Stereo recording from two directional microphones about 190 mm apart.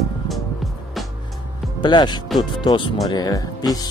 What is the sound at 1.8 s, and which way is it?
Speech, 25° left (ahead or behind).